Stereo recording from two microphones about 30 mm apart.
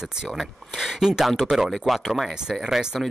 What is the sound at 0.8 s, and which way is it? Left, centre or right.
Speech, centre.